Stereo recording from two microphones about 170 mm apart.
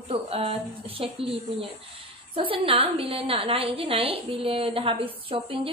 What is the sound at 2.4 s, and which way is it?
A woman's voice, 30° right (ahead or behind).